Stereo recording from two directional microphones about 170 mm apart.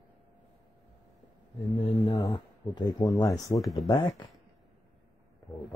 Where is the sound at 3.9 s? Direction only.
25° left (ahead or behind).